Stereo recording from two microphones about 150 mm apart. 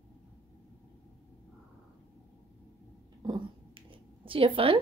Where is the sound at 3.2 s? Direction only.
30° right (ahead or behind).